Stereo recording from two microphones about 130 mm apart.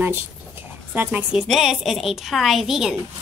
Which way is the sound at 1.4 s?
Centre (ahead or behind).